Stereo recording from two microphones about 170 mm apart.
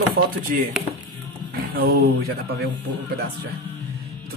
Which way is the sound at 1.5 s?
65° right (ahead or behind).